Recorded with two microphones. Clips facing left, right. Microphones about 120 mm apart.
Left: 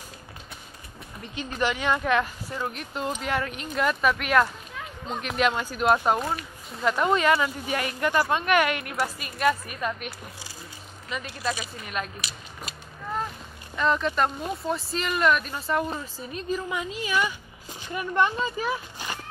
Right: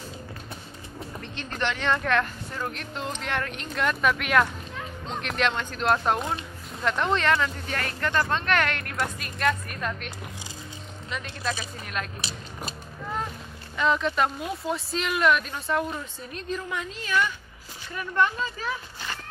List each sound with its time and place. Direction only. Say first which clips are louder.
1.2 s speech: left 3 dB; 10° left (ahead or behind)
12.2 s speech: right 3 dB; 30° right (ahead or behind)
13.7 s speech: even; centre (ahead or behind)